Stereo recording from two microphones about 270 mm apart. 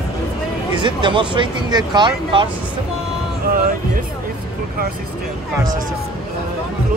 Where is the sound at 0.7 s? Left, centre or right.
Centre.